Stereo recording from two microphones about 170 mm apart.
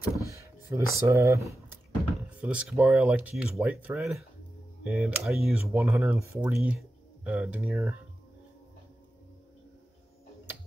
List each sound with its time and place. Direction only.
0.3 s speech: 15° right (ahead or behind)
2.4 s speech: 5° right (ahead or behind)